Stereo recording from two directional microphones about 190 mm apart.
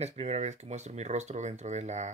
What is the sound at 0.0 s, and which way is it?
Speech, 35° right (ahead or behind).